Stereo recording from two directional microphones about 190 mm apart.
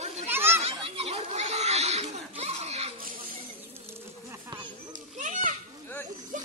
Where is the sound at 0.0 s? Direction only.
35° right (ahead or behind).